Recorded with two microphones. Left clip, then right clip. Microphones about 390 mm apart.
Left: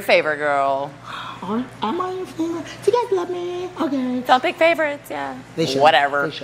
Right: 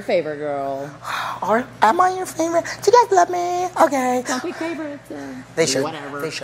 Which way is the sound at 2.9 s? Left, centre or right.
Right.